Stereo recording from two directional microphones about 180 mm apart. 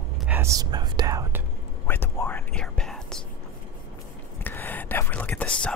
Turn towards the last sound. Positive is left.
turn(degrees=5)  # may be behind; listen again after turning